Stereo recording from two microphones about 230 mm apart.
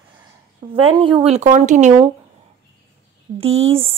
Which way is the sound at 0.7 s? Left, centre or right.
Right.